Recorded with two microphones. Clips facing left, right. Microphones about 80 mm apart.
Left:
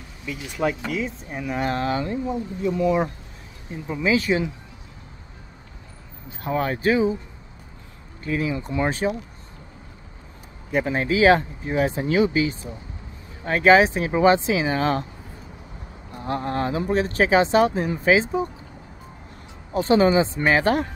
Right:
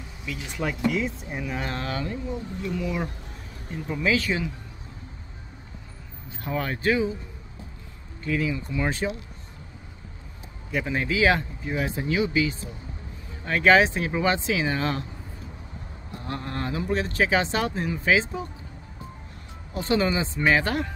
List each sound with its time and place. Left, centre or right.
0.3 s speech: centre
1.6 s speech: centre
6.4 s speech: left
8.3 s speech: left
10.7 s speech: left
14.8 s speech: left
16.2 s speech: left
19.7 s speech: left